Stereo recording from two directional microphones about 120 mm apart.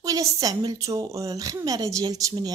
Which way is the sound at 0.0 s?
30° right (ahead or behind).